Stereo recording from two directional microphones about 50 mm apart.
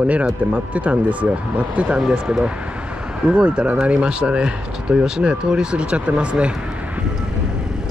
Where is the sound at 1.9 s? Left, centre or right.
Centre.